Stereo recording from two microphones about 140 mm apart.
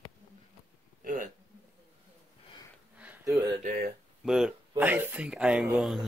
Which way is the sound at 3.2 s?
20° right (ahead or behind).